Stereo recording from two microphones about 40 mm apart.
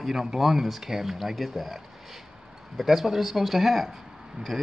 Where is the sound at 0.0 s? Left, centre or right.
Centre.